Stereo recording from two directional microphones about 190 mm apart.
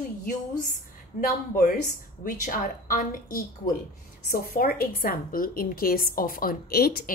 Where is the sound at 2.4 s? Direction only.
45° left (ahead or behind).